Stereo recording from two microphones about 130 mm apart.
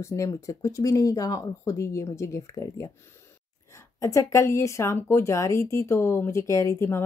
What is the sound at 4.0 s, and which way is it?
Speech, 25° left (ahead or behind).